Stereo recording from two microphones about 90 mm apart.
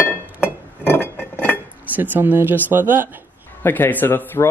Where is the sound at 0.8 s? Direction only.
25° left (ahead or behind).